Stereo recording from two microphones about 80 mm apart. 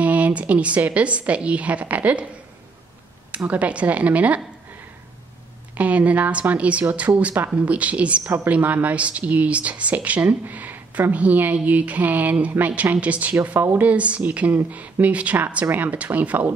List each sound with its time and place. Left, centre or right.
0.0 s speech: centre
3.3 s speech: centre
5.8 s speech: centre